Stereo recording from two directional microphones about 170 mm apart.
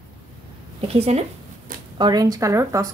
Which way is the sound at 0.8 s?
35° right (ahead or behind).